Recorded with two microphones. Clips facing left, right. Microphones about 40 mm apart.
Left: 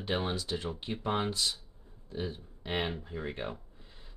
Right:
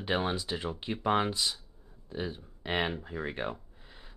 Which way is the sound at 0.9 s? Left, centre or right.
Right.